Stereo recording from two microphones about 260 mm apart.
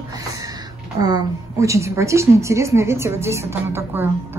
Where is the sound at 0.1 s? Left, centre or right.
Centre.